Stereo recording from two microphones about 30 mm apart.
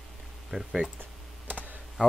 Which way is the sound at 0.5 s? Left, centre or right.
Centre.